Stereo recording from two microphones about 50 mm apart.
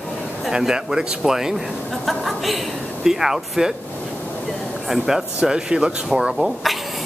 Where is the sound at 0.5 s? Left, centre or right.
Centre.